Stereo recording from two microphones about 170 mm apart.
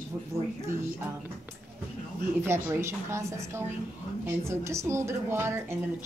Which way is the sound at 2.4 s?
15° right (ahead or behind).